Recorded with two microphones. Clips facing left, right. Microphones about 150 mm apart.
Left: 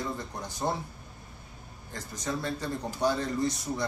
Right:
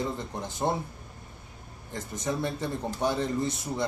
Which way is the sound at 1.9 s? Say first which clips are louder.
Right 3 dB; 20° right (ahead or behind).